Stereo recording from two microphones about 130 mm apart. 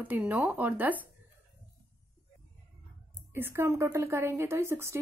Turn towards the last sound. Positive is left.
turn(degrees=-20)  # may be behind; listen again after turning